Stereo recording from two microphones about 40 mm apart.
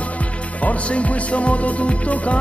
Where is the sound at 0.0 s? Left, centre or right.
Left.